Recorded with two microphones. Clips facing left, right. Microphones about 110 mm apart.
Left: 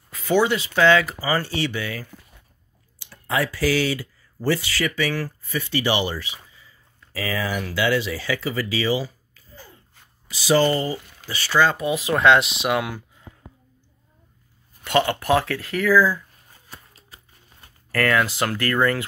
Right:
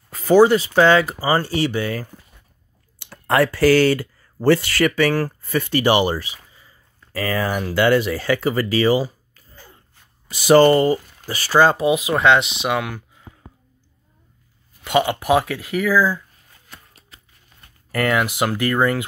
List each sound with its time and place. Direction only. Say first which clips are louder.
0.1 s speech: right 7 dB; 40° right (ahead or behind)
3.0 s speech: right 7 dB; 60° right (ahead or behind)
11.2 s speech: right 4 dB; 40° right (ahead or behind)
12.0 s speech: right 1 dB; 5° right (ahead or behind)
14.8 s speech: right 2 dB; 10° right (ahead or behind)
16.6 s a sound: left 1 dB; 35° left (ahead or behind)
17.9 s speech: right 1 dB; 15° right (ahead or behind)